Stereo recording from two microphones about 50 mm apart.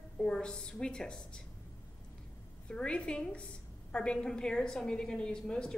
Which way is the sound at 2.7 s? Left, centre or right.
Centre.